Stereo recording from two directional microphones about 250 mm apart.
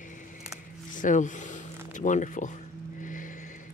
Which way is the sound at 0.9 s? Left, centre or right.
Left.